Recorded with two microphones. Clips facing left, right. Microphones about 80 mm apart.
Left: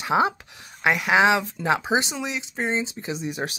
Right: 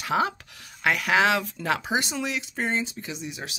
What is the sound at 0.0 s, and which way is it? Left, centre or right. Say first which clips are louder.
Speech: left 4 dB; left.